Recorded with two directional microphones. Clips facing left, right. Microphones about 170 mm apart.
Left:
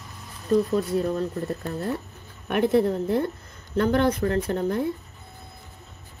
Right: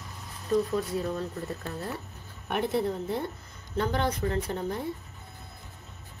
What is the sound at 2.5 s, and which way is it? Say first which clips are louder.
Speech: left 7 dB; 90° left.